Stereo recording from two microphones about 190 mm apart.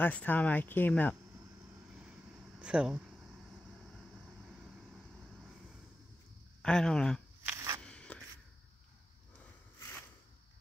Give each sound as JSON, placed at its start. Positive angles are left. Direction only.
{"t": 0.0, "sound": "speech", "side_deg": 10}
{"t": 2.6, "sound": "speech", "side_deg": -5}
{"t": 6.6, "sound": "speech", "side_deg": 5}
{"t": 7.4, "sound": "a sound", "side_deg": -15}
{"t": 7.8, "sound": "biting", "side_deg": 5}